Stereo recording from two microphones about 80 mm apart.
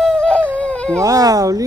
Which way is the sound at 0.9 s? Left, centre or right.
Right.